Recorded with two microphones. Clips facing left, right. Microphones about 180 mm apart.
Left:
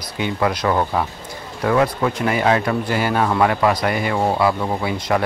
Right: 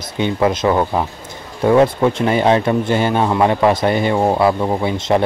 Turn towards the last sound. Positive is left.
turn(degrees=-25)  # may be behind; listen again after turning